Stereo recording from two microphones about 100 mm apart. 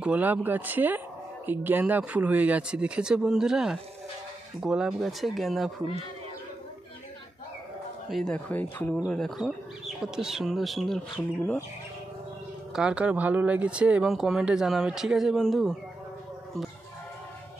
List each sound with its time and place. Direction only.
0.0 s speech: 15° right (ahead or behind)
8.1 s speech: centre (ahead or behind)
8.5 s speech: 15° left (ahead or behind)
12.7 s speech: 10° right (ahead or behind)